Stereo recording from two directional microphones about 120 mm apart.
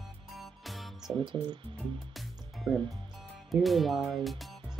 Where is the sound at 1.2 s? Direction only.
40° right (ahead or behind).